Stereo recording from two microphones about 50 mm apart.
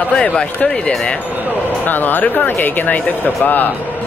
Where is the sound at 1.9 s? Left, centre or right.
Left.